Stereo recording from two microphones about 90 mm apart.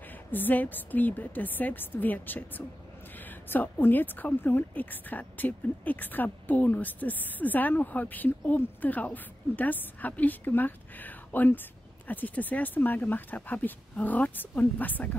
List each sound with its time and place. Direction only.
0.3 s a woman's voice: 20° left (ahead or behind)